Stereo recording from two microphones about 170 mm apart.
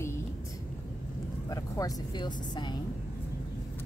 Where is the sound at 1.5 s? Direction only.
20° left (ahead or behind).